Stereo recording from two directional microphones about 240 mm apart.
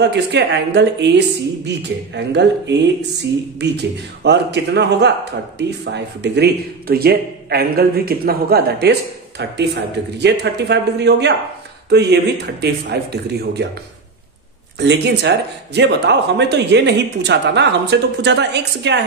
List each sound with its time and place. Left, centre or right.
0.0 s speech: right
14.8 s speech: right